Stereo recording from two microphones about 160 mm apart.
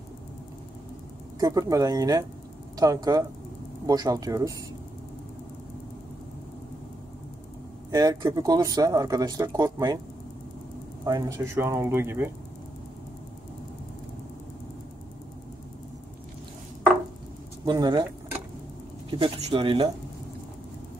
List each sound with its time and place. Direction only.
1.4 s speech: 20° right (ahead or behind)
7.9 s speech: 20° right (ahead or behind)
11.1 s speech: 20° right (ahead or behind)
17.6 s speech: 25° right (ahead or behind)
19.0 s speech: 35° right (ahead or behind)